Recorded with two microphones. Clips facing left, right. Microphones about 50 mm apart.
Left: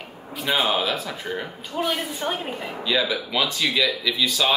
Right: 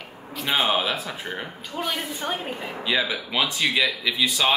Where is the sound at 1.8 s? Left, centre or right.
Centre.